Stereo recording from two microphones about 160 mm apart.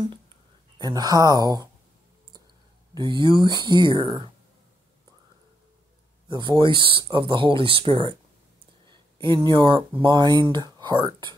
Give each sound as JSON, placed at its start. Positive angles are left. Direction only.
{"t": 0.7, "sound": "speech", "side_deg": -25}
{"t": 2.9, "sound": "speech", "side_deg": -30}
{"t": 6.2, "sound": "speech", "side_deg": -30}
{"t": 9.2, "sound": "speech", "side_deg": -30}